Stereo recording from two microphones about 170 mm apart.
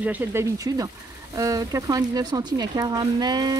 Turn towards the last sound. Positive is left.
turn(degrees=-25)  # may be behind; listen again after turning